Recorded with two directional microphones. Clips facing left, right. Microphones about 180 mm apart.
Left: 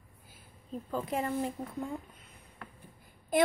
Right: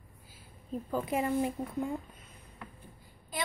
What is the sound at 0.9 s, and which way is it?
A woman's voice, 5° right (ahead or behind).